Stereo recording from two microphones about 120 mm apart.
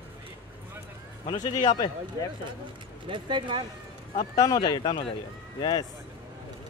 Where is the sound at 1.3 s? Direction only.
35° left (ahead or behind).